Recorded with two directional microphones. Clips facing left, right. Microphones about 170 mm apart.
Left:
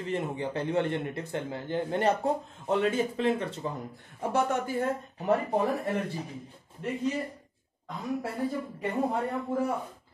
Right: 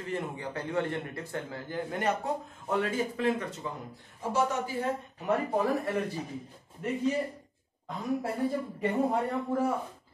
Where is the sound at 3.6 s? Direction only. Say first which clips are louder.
Left 3 dB; 35° left (ahead or behind).